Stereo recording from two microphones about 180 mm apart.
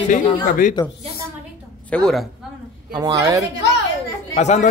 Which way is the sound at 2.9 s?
20° right (ahead or behind).